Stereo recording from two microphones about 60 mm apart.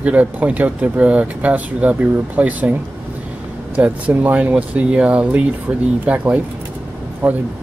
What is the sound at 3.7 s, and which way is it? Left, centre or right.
Speech, right.